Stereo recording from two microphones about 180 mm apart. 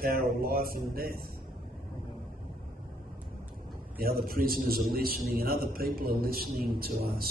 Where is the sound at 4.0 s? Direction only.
55° right (ahead or behind).